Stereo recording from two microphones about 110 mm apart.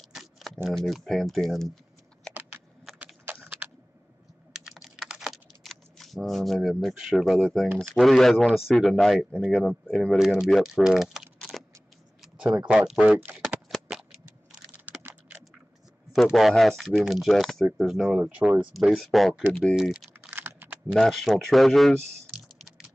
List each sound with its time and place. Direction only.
0.1 s typing: centre (ahead or behind)
0.7 s speech: centre (ahead or behind)
2.9 s crushing: centre (ahead or behind)
3.3 s computer keyboard: 15° right (ahead or behind)
4.5 s computer keyboard: centre (ahead or behind)
7.9 s speech: centre (ahead or behind)
10.1 s speech: 5° right (ahead or behind)
13.5 s a sound: centre (ahead or behind)
14.5 s computer keyboard: 15° right (ahead or behind)
16.1 s speech: 5° right (ahead or behind)
20.1 s typing: 20° right (ahead or behind)
20.8 s speech: 5° left (ahead or behind)